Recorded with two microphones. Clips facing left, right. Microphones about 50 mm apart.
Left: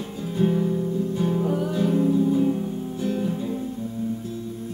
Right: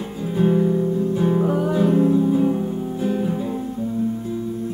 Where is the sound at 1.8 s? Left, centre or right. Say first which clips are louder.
Right 4 dB; centre.